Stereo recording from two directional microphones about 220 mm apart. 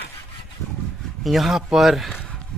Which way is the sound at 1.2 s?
Centre (ahead or behind).